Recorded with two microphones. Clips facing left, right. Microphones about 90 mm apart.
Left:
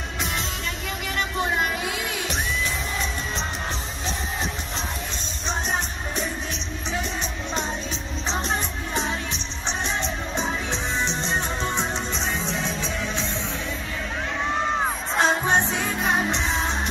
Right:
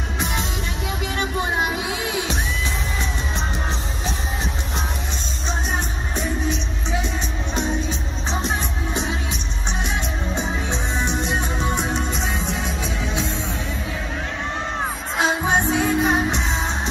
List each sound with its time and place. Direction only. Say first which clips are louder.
1.0 s music: right 1 dB; 20° right (ahead or behind)
8.3 s music: right 2 dB; 15° right (ahead or behind)
15.1 s music: right 1 dB; 5° right (ahead or behind)